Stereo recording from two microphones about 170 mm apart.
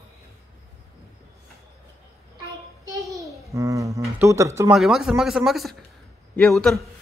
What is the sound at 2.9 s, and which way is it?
Babbling, 20° right (ahead or behind).